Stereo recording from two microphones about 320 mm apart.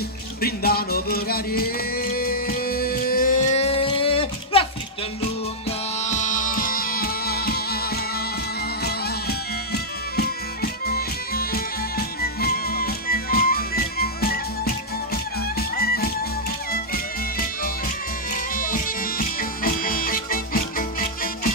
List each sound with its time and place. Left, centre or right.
0.4 s music: left
5.9 s music: left
18.6 s music: left